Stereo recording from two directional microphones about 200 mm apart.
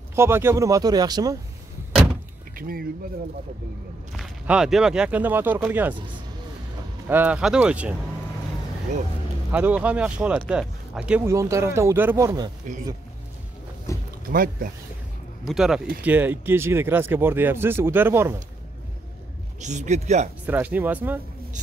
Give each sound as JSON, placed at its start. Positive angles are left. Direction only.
{"t": 0.1, "sound": "speech", "side_deg": -10}
{"t": 2.5, "sound": "speech", "side_deg": -45}
{"t": 4.2, "sound": "speech", "side_deg": 0}
{"t": 7.1, "sound": "speech", "side_deg": -10}
{"t": 9.5, "sound": "speech", "side_deg": -5}
{"t": 12.7, "sound": "speech", "side_deg": -40}
{"t": 13.9, "sound": "boat", "side_deg": 15}
{"t": 14.3, "sound": "speech", "side_deg": -45}
{"t": 15.4, "sound": "speech", "side_deg": 0}
{"t": 19.6, "sound": "speech", "side_deg": -35}
{"t": 20.4, "sound": "speech", "side_deg": -10}